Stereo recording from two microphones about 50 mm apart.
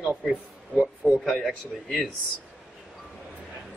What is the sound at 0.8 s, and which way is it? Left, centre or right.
A man's voice, centre.